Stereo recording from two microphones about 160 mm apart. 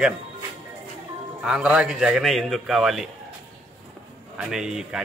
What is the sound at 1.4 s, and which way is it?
A man's voice, 5° right (ahead or behind).